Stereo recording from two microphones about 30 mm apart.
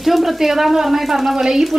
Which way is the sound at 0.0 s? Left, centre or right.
Centre.